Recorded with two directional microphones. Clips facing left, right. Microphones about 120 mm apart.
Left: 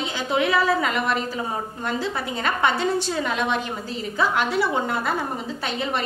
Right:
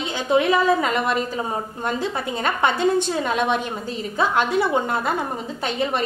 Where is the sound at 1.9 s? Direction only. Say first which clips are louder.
Even; 20° right (ahead or behind).